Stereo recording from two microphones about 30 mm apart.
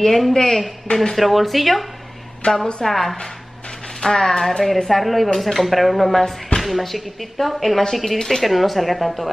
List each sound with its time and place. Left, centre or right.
0.0 s speech: centre
0.3 s speech: centre
1.1 s speech: centre
2.5 s speech: centre